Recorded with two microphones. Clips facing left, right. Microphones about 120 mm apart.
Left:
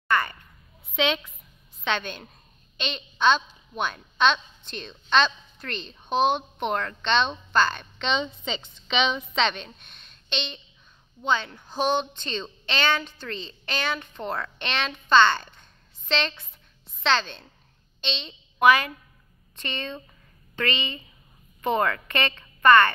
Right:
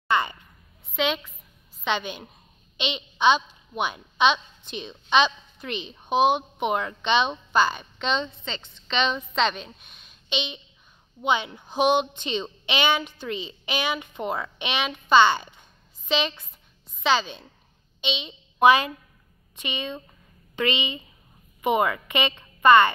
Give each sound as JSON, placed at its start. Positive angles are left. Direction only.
{"t": 0.1, "sound": "a sound", "side_deg": -20}
{"t": 0.9, "sound": "a woman's voice", "side_deg": -5}
{"t": 18.6, "sound": "a woman's voice", "side_deg": -20}
{"t": 19.5, "sound": "a woman's voice", "side_deg": -10}